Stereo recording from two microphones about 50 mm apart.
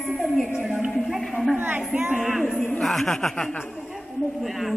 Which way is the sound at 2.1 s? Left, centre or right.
Centre.